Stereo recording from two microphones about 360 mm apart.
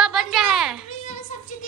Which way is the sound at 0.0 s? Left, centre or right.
Centre.